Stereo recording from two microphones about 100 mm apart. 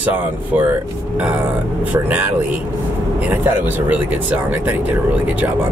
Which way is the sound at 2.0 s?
15° right (ahead or behind).